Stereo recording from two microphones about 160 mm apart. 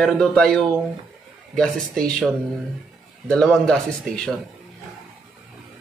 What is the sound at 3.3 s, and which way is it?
Speech, 5° left (ahead or behind).